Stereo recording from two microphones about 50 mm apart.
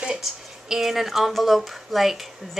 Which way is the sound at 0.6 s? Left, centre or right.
Centre.